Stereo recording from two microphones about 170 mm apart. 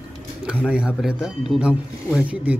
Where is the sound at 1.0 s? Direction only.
5° right (ahead or behind).